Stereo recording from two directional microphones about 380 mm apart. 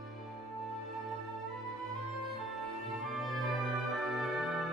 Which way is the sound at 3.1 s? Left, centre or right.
Centre.